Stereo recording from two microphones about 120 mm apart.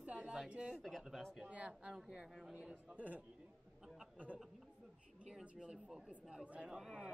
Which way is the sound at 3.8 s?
5° right (ahead or behind).